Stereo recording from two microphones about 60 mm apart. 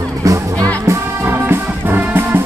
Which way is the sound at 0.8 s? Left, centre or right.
Right.